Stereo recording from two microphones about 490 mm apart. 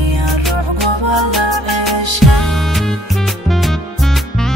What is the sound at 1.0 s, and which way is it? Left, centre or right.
Music, right.